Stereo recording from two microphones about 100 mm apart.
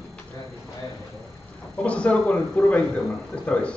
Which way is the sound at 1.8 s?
15° left (ahead or behind).